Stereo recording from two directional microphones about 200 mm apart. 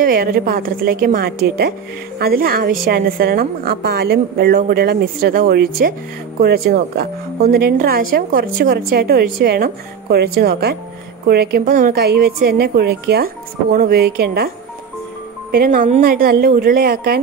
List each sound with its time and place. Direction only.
0.0 s a woman's voice: 45° right (ahead or behind)
15.5 s a woman's voice: 45° right (ahead or behind)